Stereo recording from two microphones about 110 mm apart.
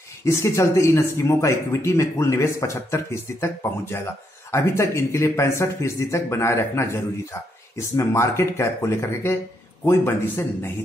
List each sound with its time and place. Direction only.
0.2 s speech: 25° left (ahead or behind)